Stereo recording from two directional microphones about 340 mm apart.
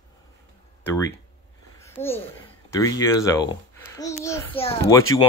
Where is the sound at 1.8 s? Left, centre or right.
Centre.